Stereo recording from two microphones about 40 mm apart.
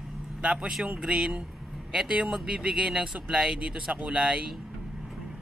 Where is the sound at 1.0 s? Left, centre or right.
Centre.